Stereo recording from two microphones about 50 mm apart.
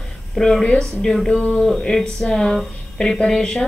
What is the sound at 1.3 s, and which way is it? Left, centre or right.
Speech, left.